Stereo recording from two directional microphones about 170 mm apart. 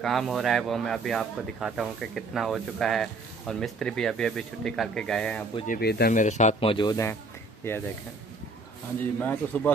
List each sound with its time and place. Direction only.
0.0 s speech: centre (ahead or behind)
5.7 s speech: 70° left (ahead or behind)
6.1 s a man's voice: 45° left (ahead or behind); by 7.8 s 15° left (ahead or behind)
9.2 s a man's voice: 10° left (ahead or behind)